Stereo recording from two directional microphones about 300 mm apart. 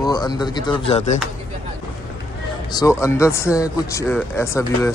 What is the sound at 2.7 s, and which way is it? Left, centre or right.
Speech, centre.